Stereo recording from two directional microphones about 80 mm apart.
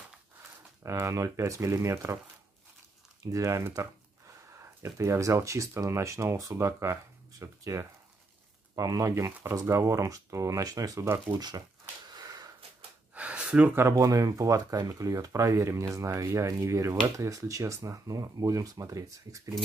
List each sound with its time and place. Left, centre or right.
0.8 s speech: right
3.3 s speech: right
11.3 s speech: right
12.1 s sniff: right
13.1 s a sound: centre
13.7 s speech: right